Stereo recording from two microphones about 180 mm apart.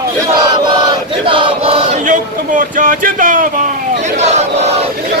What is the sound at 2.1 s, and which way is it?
Speech, 45° right (ahead or behind).